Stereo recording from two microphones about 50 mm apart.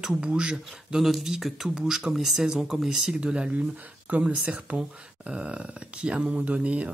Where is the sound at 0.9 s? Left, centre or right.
Centre.